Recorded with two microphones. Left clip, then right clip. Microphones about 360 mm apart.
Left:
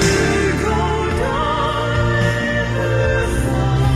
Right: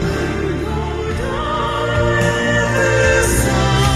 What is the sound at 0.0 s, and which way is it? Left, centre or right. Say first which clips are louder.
Music: left 4 dB; left.